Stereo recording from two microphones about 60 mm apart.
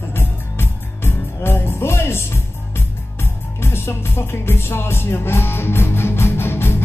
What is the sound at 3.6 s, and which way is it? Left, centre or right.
Music, left.